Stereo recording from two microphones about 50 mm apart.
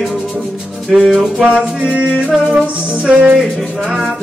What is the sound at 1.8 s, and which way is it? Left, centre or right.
Music, right.